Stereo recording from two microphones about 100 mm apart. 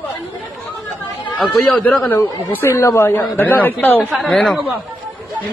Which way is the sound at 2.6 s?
25° left (ahead or behind).